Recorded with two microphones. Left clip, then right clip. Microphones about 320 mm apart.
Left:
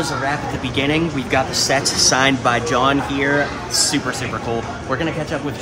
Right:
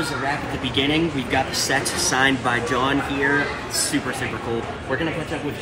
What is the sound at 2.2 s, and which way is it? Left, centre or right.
Speech, left.